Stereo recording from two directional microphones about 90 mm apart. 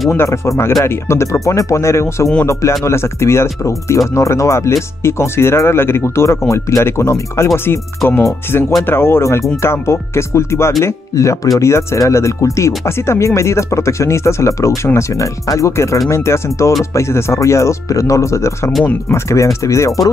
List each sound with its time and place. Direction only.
0.1 s speech: 30° left (ahead or behind)